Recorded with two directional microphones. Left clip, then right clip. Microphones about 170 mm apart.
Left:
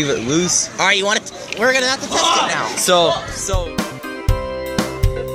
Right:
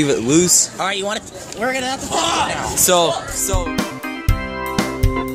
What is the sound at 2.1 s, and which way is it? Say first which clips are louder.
Speech: left 1 dB; 50° right (ahead or behind).